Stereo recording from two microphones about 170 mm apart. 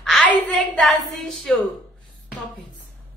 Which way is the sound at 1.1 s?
Centre (ahead or behind).